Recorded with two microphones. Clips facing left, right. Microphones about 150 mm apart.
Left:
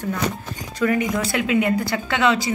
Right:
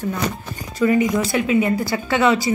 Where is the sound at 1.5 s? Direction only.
Centre (ahead or behind).